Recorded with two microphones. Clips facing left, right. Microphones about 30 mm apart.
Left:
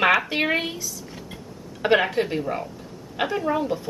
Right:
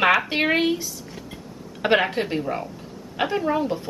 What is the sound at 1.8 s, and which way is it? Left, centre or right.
A woman's voice, centre.